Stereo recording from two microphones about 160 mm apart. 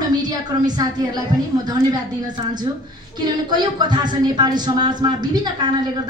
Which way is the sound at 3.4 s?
25° right (ahead or behind).